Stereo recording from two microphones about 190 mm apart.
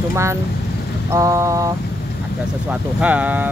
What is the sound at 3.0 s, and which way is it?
Speech, 10° right (ahead or behind).